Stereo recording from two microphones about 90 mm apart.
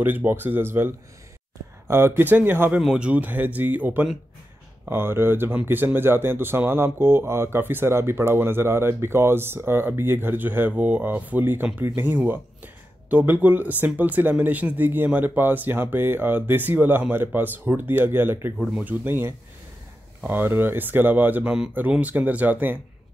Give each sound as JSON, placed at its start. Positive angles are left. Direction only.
{"t": 0.0, "sound": "speech", "side_deg": -20}
{"t": 2.8, "sound": "speech", "side_deg": -10}